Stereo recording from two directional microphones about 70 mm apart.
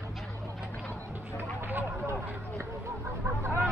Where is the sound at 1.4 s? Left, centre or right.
Right.